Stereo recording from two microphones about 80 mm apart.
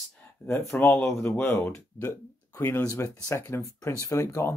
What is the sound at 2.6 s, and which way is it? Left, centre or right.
Speech, left.